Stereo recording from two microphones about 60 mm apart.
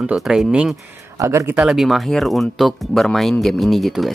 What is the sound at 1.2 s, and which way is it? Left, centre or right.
Speech, right.